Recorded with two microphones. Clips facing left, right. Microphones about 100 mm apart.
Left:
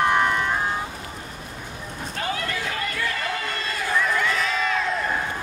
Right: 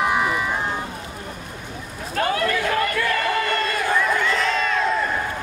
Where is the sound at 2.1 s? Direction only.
60° right (ahead or behind).